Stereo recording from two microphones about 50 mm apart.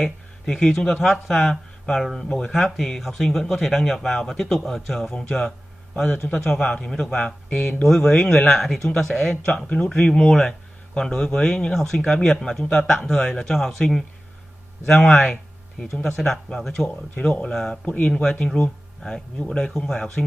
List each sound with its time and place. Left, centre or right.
0.0 s speech: centre